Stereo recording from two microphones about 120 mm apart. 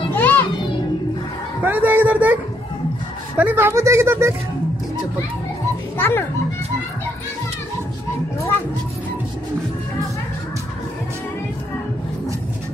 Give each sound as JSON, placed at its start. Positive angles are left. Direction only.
{"t": 0.1, "sound": "music", "side_deg": 15}
{"t": 1.6, "sound": "a sound", "side_deg": -15}
{"t": 3.3, "sound": "speech", "side_deg": -15}
{"t": 5.9, "sound": "a child's voice", "side_deg": 20}